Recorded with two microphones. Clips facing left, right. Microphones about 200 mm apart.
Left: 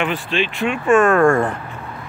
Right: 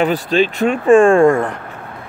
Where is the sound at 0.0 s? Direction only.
40° right (ahead or behind).